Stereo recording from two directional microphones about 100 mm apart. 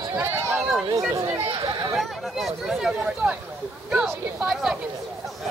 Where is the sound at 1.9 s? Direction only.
Centre (ahead or behind).